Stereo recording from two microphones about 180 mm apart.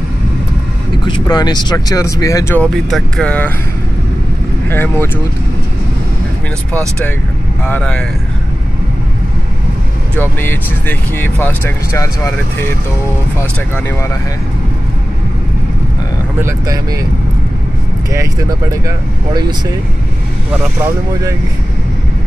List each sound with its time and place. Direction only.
1.0 s speech: 25° left (ahead or behind); by 3.5 s 10° left (ahead or behind)
4.6 s speech: 10° left (ahead or behind)
7.6 s speech: 10° left (ahead or behind)
10.1 s speech: 10° left (ahead or behind)
16.3 s speech: 15° right (ahead or behind)
18.1 s speech: 15° right (ahead or behind)